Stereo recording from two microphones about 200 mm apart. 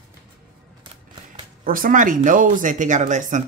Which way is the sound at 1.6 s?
45° right (ahead or behind).